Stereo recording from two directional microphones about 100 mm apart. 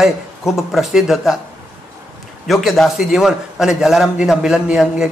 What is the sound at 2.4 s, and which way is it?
Speech, centre (ahead or behind).